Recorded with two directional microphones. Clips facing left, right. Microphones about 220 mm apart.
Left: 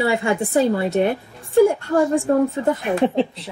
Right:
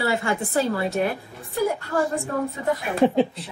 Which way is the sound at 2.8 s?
Centre (ahead or behind).